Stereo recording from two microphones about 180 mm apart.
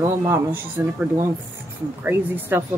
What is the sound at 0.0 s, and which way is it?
Speech, 15° right (ahead or behind).